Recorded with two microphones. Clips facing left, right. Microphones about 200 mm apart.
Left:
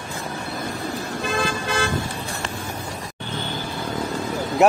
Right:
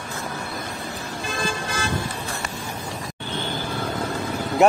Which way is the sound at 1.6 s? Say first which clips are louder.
Left 4 dB; 65° left (ahead or behind).